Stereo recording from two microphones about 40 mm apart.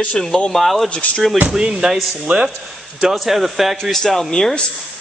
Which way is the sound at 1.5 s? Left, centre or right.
Centre.